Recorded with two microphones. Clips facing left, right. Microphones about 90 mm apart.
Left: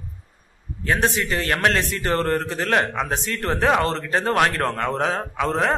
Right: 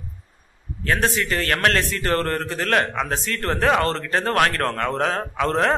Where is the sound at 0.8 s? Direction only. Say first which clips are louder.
Even; 20° left (ahead or behind).